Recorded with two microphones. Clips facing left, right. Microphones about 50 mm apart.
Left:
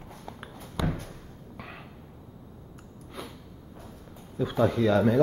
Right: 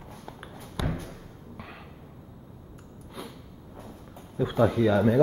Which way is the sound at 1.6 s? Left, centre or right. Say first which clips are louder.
Left 1 dB; centre.